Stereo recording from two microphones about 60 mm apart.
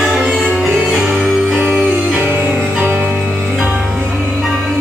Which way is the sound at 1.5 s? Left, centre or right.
Right.